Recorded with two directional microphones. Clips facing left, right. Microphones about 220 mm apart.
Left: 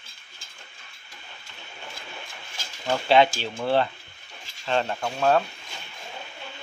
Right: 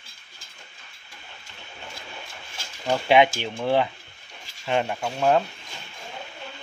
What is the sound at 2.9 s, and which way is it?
Speech, 15° right (ahead or behind).